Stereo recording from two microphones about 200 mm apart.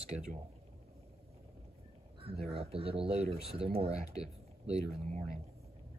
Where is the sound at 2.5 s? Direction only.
30° right (ahead or behind).